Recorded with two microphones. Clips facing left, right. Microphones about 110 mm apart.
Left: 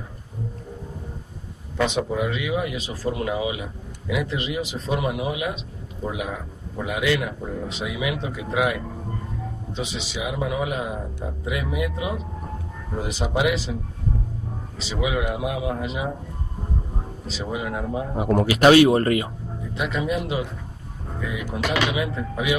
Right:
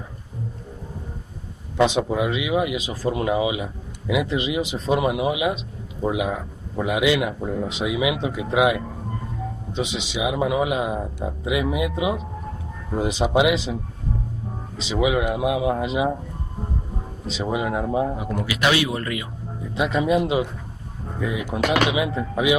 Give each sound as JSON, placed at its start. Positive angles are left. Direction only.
{"t": 1.8, "sound": "a man's voice", "side_deg": -20}
{"t": 14.9, "sound": "speech", "side_deg": -20}
{"t": 17.3, "sound": "speech", "side_deg": -20}
{"t": 18.1, "sound": "speech", "side_deg": 40}
{"t": 19.7, "sound": "speech", "side_deg": -20}
{"t": 21.5, "sound": "speech", "side_deg": -20}